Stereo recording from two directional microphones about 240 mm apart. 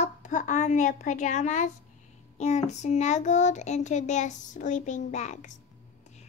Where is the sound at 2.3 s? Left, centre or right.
Left.